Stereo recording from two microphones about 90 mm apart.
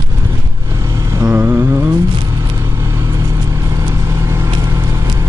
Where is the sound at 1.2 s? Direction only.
20° right (ahead or behind).